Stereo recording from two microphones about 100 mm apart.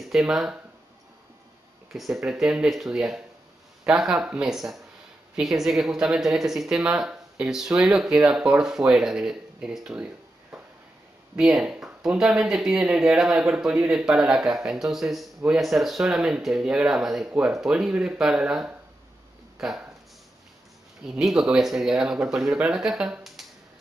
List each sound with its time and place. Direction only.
0.0 s speech: 5° right (ahead or behind)
1.9 s speech: centre (ahead or behind)
21.1 s speech: centre (ahead or behind)